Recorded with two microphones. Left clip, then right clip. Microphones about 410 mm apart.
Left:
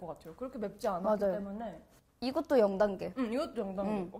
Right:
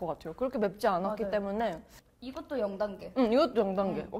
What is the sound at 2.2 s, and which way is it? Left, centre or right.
Speech, left.